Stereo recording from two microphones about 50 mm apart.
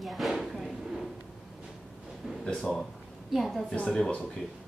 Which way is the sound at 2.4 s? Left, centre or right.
Centre.